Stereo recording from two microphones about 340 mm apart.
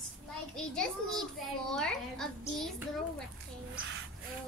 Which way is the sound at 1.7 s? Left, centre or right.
Centre.